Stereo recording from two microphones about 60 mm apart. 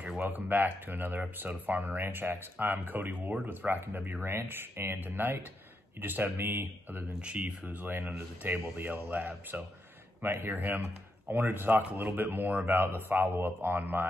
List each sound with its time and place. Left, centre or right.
0.2 s speech: right
7.2 s speech: right